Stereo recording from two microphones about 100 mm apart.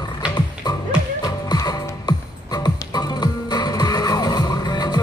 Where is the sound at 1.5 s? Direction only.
40° left (ahead or behind).